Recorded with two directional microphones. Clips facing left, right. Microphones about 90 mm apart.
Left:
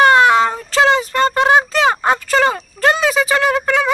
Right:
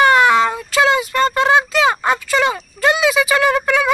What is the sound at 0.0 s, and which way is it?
Child singing, 30° left (ahead or behind).